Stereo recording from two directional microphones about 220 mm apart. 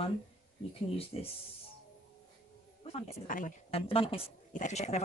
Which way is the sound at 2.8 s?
35° left (ahead or behind).